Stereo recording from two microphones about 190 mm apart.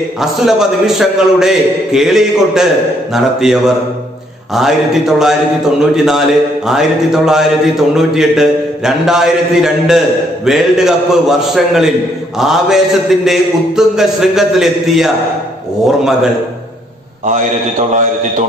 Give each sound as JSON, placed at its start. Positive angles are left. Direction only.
{"t": 0.2, "sound": "mantra", "side_deg": 0}
{"t": 17.2, "sound": "a man's voice", "side_deg": -40}